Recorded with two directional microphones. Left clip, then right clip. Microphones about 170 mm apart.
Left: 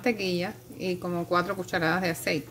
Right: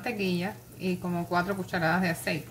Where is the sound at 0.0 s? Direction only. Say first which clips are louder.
Left 3 dB; 55° left (ahead or behind).